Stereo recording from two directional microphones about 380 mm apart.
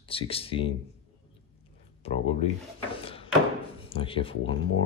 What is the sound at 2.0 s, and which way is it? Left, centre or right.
Speech, centre.